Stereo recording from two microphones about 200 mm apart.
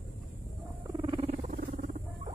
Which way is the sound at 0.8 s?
25° right (ahead or behind).